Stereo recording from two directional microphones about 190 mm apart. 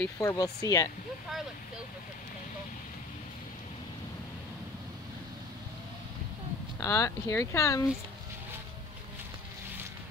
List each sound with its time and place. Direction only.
0.0 s speech: 15° left (ahead or behind)
6.8 s speech: 15° left (ahead or behind)